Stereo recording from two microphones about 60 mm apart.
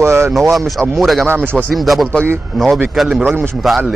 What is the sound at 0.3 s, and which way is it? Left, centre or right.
Speech, centre.